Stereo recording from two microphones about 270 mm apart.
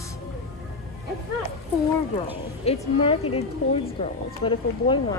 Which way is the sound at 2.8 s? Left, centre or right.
Centre.